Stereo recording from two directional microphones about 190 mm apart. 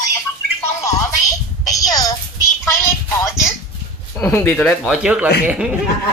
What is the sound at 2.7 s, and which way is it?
Speech, 15° left (ahead or behind).